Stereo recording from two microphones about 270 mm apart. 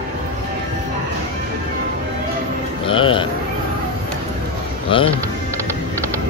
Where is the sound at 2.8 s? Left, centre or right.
Centre.